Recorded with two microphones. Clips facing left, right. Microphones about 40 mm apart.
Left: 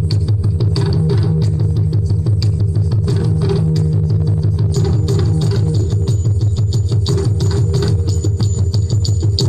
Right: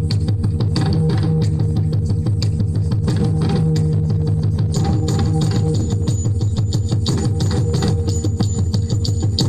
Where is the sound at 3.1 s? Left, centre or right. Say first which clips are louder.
Left 1 dB; centre.